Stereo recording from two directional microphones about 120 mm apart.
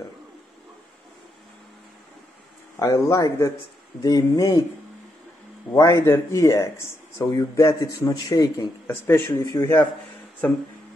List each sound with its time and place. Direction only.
2.8 s speech: 30° left (ahead or behind)
5.9 s speech: 25° left (ahead or behind)
8.8 s speech: 20° left (ahead or behind)